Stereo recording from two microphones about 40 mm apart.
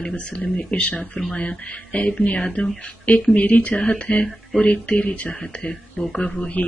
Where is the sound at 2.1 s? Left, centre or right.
Left.